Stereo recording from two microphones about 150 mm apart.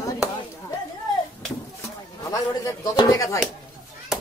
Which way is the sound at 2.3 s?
25° left (ahead or behind).